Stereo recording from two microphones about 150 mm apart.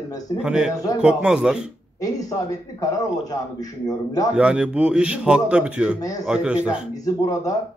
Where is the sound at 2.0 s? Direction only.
25° left (ahead or behind).